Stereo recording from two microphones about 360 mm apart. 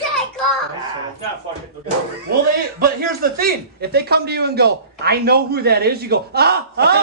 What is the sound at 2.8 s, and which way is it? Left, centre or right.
Speech, right.